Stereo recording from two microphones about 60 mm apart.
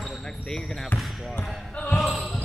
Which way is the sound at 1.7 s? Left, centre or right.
Left.